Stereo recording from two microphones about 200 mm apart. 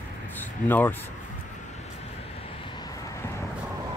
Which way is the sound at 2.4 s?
25° left (ahead or behind).